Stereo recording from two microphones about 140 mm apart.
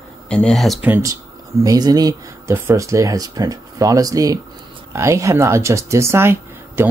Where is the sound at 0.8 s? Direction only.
15° right (ahead or behind).